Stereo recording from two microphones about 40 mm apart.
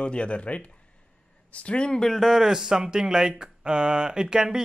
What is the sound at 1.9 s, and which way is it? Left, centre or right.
Speech, centre.